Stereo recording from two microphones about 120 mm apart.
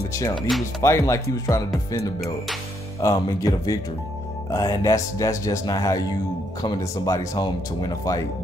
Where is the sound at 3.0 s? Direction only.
30° left (ahead or behind).